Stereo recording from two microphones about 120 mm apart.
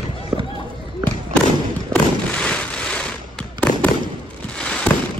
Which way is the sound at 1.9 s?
10° left (ahead or behind).